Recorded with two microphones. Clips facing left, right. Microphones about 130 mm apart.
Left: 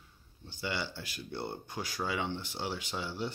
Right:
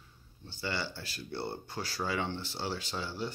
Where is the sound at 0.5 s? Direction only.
15° left (ahead or behind).